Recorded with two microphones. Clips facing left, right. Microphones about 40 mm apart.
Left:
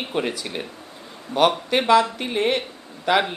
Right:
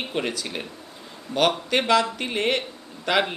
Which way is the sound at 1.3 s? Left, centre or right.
Centre.